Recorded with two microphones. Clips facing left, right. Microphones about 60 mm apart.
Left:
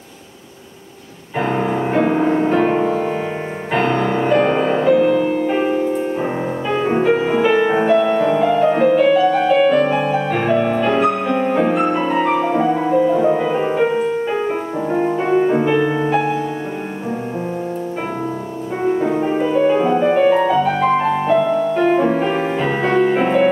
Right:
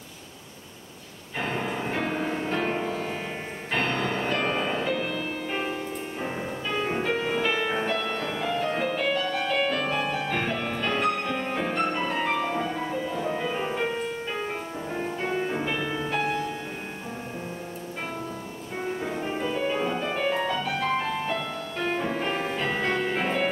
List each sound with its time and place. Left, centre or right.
1.4 s music: centre
18.9 s music: left